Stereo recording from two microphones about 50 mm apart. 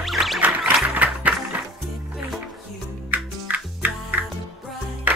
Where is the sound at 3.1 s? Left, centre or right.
Right.